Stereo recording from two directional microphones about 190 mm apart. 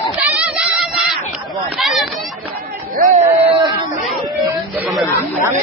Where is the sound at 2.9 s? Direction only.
40° right (ahead or behind).